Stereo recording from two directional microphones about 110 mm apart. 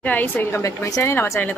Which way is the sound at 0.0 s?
15° left (ahead or behind).